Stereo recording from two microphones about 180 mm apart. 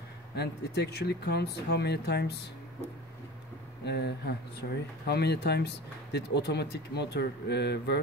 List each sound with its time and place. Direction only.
0.4 s speech: 65° left (ahead or behind)
3.8 s speech: 70° left (ahead or behind)